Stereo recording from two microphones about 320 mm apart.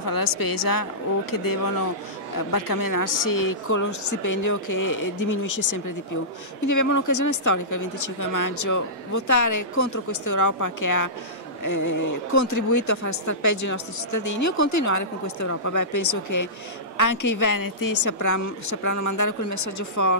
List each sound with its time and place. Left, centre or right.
0.0 s a woman's voice: left
3.7 s a woman's voice: left
18.0 s a woman's voice: left